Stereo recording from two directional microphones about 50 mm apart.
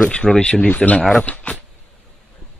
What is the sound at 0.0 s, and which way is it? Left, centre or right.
Speech, left.